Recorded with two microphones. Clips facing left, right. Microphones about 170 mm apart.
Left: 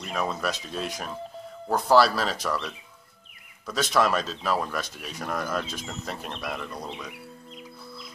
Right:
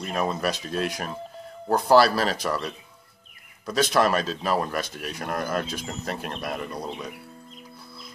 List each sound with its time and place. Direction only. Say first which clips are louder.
0.1 s speech: right 2 dB; 5° right (ahead or behind)